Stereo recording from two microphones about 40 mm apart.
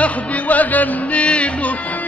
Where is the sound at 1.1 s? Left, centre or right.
Left.